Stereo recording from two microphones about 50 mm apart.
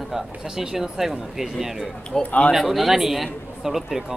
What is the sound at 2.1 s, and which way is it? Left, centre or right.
Speech, centre.